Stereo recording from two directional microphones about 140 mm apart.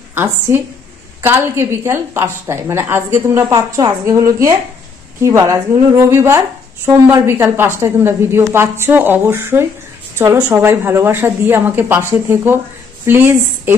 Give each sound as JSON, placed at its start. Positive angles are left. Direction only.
{"t": 0.1, "sound": "a woman's voice", "side_deg": -15}